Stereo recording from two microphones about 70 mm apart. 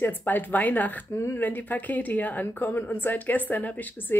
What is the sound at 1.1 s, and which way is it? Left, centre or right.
Speech, left.